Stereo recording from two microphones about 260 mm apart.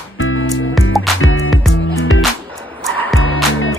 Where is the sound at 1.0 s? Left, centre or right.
Left.